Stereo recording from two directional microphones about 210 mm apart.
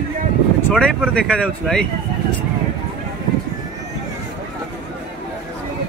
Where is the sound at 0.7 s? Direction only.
Centre (ahead or behind).